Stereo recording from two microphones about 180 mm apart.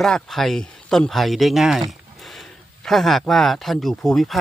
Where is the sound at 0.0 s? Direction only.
Centre (ahead or behind).